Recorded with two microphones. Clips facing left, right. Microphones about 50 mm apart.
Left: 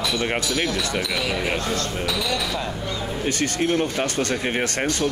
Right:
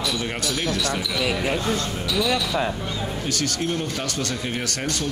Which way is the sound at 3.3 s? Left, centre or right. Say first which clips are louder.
Left 4 dB; left.